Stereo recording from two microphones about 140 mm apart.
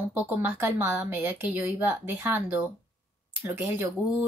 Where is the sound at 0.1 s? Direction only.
15° right (ahead or behind).